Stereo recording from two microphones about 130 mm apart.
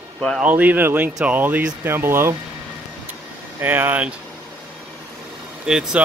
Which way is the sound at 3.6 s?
15° right (ahead or behind).